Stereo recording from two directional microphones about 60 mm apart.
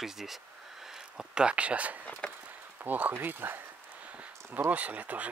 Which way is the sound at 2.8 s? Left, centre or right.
Right.